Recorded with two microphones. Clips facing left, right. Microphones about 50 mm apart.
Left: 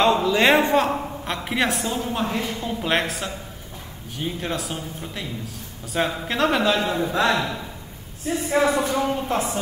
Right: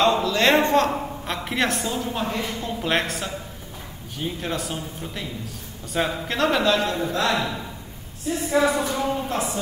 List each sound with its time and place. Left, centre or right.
0.0 s a man's voice: centre
7.3 s speech: centre
8.5 s a woman's voice: left